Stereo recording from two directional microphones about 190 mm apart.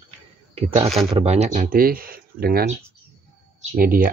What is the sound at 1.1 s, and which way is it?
Speech, 35° right (ahead or behind).